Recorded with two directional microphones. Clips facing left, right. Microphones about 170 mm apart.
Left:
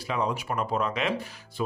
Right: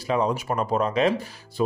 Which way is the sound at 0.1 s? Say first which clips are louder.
Right 5 dB; 35° right (ahead or behind).